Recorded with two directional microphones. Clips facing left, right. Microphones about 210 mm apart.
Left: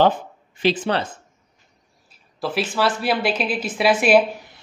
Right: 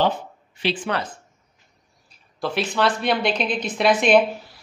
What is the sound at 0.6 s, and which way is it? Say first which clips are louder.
Speech: left 4 dB; 40° left (ahead or behind).